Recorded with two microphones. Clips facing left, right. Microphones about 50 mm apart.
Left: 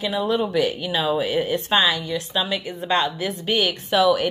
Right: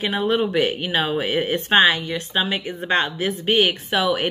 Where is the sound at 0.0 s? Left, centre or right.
Right.